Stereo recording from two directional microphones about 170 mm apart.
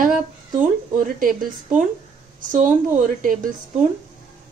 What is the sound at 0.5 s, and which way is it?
Speech, 50° right (ahead or behind).